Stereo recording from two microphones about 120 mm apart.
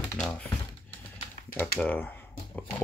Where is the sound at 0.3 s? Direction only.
15° left (ahead or behind).